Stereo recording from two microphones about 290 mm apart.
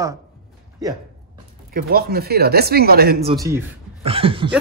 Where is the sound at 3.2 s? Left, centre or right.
Centre.